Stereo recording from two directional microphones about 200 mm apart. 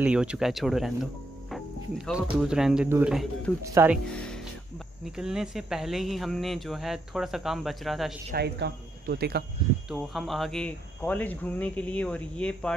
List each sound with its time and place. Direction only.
0.0 s speech: 5° right (ahead or behind)
1.5 s music: centre (ahead or behind)
2.4 s speech: 5° right (ahead or behind)
3.6 s speech: 15° right (ahead or behind)
3.9 s speech: centre (ahead or behind)
8.4 s speech: 55° right (ahead or behind)
9.8 s speech: centre (ahead or behind)